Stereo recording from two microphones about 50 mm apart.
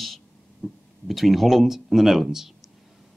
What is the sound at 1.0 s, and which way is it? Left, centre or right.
Speech, centre.